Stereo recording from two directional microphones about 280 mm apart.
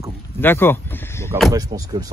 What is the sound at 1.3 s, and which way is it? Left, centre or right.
Speech, centre.